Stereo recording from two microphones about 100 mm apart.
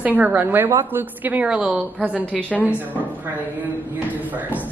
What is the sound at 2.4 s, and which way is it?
Speech, 15° left (ahead or behind).